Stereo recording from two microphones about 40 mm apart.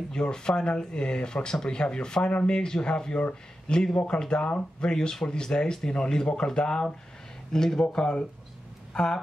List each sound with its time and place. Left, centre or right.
0.1 s speech: centre
7.8 s speech: left